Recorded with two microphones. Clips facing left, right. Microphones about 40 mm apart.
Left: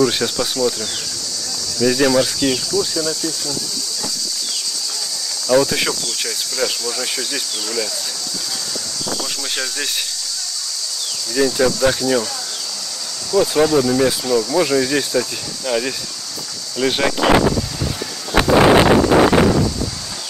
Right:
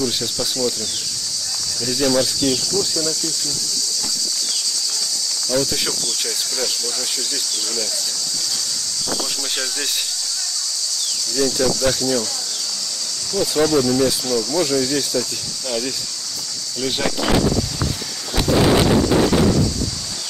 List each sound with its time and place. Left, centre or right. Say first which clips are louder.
1.8 s speech: left 8 dB; left
2.0 s speech: left 2 dB; left
5.5 s speech: left 7 dB; left
11.3 s speech: left 3 dB; left
13.3 s speech: left 3 dB; centre; by 17.6 s left
17.6 s a sound: even; centre
18.3 s a sound: left 5 dB; left
19.0 s wind noise: left 4 dB; left
19.4 s a sound: left 2 dB; left